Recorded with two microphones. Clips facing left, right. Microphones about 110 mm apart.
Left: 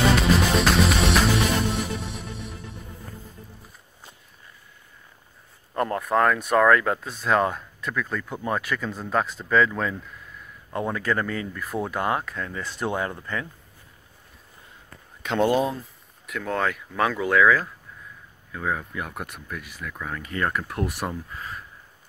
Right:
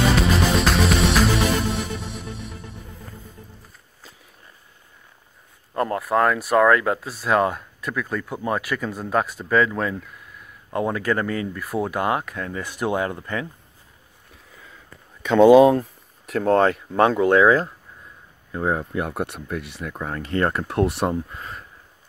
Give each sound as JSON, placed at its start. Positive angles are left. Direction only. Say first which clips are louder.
{"t": 0.1, "sound": "music", "louder": "right 1 dB", "side_deg": 0}
{"t": 5.9, "sound": "speech", "louder": "right 1 dB", "side_deg": -5}
{"t": 15.5, "sound": "speech", "louder": "right 11 dB", "side_deg": -80}
{"t": 16.3, "sound": "speech", "louder": "right 9 dB", "side_deg": -35}